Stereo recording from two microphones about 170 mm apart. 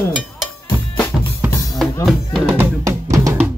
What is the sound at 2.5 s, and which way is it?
Drum, 20° right (ahead or behind).